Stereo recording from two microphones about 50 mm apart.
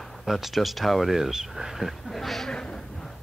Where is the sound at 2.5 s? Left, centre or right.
Centre.